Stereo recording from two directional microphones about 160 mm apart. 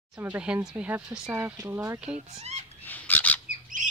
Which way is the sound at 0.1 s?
10° right (ahead or behind).